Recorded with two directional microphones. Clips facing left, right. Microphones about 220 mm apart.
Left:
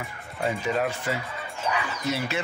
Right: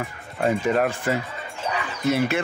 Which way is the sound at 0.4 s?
55° right (ahead or behind).